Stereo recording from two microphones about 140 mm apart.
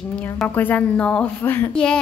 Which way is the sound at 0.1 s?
10° left (ahead or behind).